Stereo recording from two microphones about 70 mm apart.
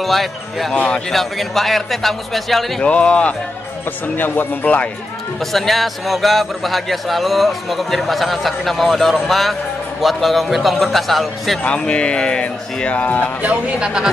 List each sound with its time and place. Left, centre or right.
0.0 s a man's voice: centre
0.7 s speech: centre
1.1 s a man's voice: centre
2.8 s speech: centre
5.5 s a man's voice: centre
11.6 s speech: centre
13.4 s speech: centre